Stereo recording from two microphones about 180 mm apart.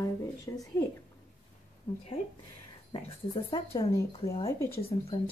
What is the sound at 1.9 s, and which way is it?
Speech, 25° left (ahead or behind).